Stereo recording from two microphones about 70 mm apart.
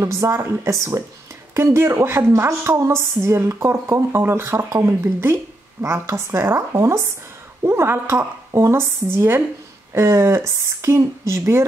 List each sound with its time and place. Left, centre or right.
0.0 s a woman's voice: right